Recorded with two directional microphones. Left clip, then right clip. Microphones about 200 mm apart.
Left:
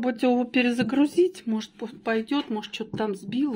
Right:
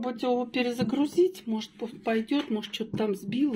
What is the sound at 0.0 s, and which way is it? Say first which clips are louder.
Speech: left 4 dB; 35° left (ahead or behind).